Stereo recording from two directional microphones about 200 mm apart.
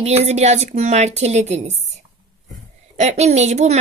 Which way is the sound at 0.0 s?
30° right (ahead or behind).